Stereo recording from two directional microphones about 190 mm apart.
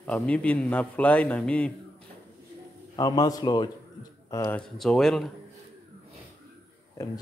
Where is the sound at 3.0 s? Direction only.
20° left (ahead or behind).